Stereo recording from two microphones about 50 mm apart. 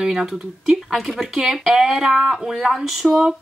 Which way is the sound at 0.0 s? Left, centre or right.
Centre.